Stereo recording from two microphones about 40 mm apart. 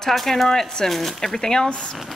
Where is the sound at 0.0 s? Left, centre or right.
Centre.